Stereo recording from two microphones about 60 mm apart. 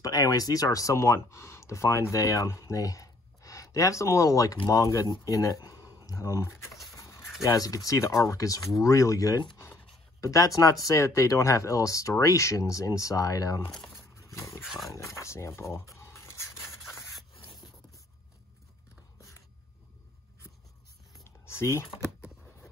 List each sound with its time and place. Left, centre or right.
0.0 s speech: left
6.9 s a sound: left
7.4 s speech: left
14.1 s wild animals: left
14.6 s dog: centre
15.1 s a sound: left
16.9 s rub: centre
21.5 s speech: left